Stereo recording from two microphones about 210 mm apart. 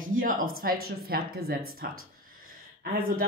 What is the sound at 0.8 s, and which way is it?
Speech, 45° right (ahead or behind).